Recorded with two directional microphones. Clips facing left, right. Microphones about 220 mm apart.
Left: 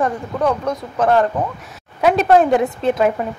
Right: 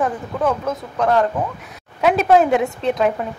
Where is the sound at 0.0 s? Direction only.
Centre (ahead or behind).